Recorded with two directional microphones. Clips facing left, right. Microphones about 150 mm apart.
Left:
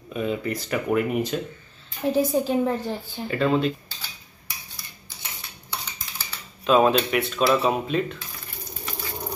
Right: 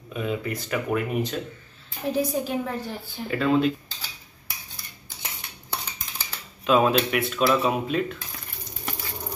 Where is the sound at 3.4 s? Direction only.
5° right (ahead or behind).